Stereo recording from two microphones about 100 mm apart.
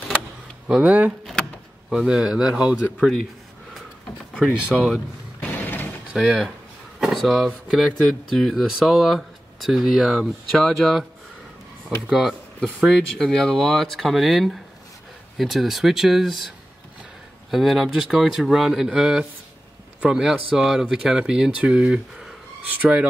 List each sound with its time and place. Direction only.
0.7 s speech: 10° right (ahead or behind)
1.4 s door: 10° left (ahead or behind)
1.9 s speech: 5° right (ahead or behind)
3.0 s speech: 5° left (ahead or behind)
4.7 s speech: centre (ahead or behind)
5.4 s a sound: 20° left (ahead or behind)
6.1 s speech: 5° right (ahead or behind)
12.1 s speech: 5° right (ahead or behind)
17.5 s speech: centre (ahead or behind)